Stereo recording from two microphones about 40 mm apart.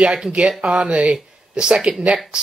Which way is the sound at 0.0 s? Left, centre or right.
Right.